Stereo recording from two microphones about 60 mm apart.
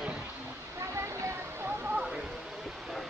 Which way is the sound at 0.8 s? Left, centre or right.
Right.